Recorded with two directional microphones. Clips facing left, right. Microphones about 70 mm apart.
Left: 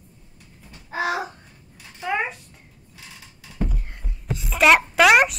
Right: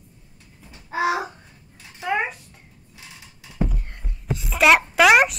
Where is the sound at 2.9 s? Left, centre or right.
Right.